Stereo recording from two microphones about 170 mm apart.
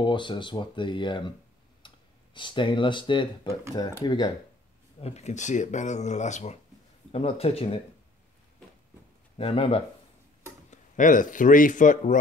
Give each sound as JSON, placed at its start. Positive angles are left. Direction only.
{"t": 0.0, "sound": "speech", "side_deg": 30}
{"t": 1.8, "sound": "clicking", "side_deg": 30}
{"t": 2.3, "sound": "speech", "side_deg": 30}
{"t": 5.0, "sound": "speech", "side_deg": 40}
{"t": 9.4, "sound": "speech", "side_deg": 30}
{"t": 10.7, "sound": "speech", "side_deg": 50}